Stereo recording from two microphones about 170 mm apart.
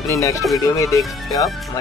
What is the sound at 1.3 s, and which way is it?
Speech, 20° left (ahead or behind).